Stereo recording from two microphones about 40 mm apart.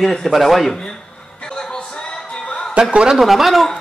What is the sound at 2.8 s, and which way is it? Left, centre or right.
Speech, right.